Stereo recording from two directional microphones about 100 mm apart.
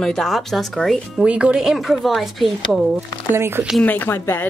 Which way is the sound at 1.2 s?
10° right (ahead or behind).